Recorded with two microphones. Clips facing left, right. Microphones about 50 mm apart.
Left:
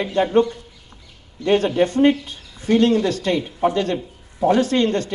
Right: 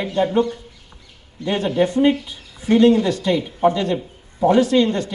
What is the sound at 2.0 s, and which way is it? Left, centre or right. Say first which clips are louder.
Speech: left 1 dB; left.